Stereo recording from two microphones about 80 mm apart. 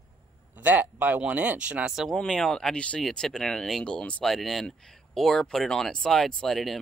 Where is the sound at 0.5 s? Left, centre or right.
Right.